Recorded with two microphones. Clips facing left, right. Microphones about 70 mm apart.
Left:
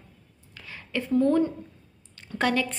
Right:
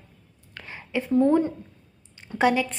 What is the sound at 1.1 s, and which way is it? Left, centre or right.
A woman's voice, right.